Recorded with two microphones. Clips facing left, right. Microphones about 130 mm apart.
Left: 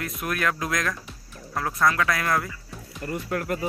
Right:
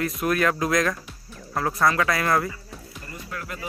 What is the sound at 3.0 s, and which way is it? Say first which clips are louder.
Speech: left 9 dB; 60° left (ahead or behind).